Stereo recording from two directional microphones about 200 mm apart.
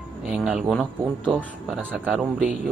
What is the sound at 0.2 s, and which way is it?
A man's voice, 5° right (ahead or behind).